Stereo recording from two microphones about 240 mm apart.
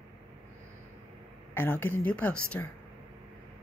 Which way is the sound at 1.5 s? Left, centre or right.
Centre.